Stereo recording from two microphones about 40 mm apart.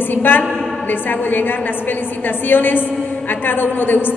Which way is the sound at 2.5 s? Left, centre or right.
Left.